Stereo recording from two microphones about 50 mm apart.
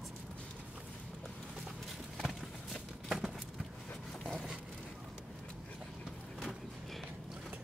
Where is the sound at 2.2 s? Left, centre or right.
Centre.